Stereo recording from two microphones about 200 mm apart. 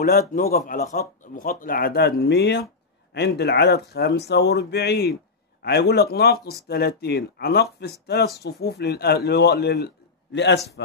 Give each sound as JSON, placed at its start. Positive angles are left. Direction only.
{"t": 0.0, "sound": "speech", "side_deg": 45}